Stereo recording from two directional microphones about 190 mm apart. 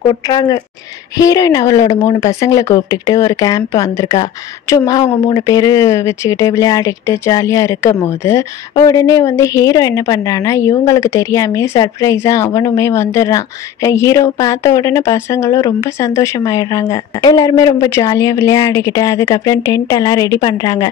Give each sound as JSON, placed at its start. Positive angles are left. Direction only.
{"t": 0.0, "sound": "a woman's voice", "side_deg": 25}